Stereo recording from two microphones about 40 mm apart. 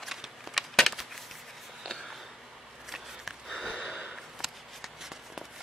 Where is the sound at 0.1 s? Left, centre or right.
Centre.